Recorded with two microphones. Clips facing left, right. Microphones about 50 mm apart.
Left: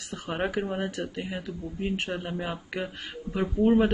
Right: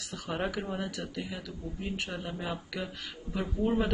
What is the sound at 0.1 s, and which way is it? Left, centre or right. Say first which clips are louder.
Speech: left 4 dB; left.